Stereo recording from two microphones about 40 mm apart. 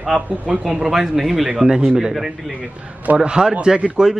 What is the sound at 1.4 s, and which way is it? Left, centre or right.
Speech, right.